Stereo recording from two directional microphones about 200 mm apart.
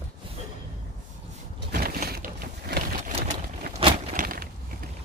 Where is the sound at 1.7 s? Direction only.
50° right (ahead or behind).